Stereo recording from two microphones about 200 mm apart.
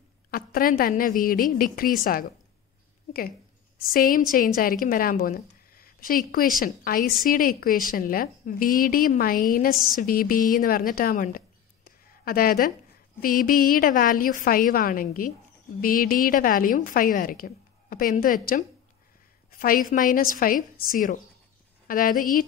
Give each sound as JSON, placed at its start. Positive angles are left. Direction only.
{"t": 0.3, "sound": "a woman's voice", "side_deg": 45}
{"t": 3.1, "sound": "a woman's voice", "side_deg": 45}